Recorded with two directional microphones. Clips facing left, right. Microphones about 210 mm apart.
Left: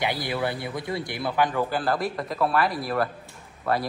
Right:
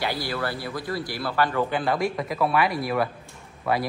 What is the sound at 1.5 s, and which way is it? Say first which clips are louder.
Speech: right 1 dB; centre (ahead or behind).